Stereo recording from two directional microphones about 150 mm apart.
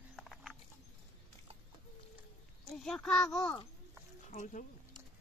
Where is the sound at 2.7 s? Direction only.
5° left (ahead or behind).